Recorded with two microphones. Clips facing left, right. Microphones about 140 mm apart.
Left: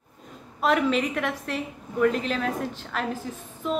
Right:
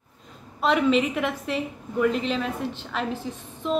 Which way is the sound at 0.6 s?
Centre (ahead or behind).